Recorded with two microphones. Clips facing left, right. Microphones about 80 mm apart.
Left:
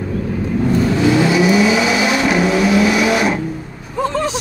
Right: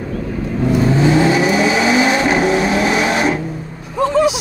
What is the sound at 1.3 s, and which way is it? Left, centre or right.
Vehicle, right.